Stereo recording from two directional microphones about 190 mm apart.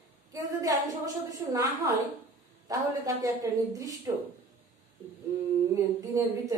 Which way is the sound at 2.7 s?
20° right (ahead or behind).